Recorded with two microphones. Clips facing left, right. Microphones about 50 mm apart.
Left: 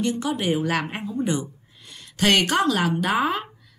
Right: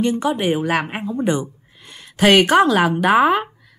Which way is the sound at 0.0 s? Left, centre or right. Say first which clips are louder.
Right 5 dB; right.